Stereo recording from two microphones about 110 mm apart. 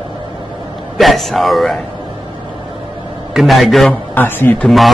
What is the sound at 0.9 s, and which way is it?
Speech, centre (ahead or behind).